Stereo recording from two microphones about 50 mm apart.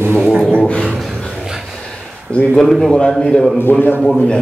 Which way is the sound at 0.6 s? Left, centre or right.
Left.